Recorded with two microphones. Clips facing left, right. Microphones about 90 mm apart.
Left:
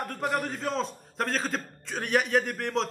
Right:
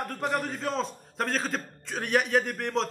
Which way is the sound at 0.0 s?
Centre (ahead or behind).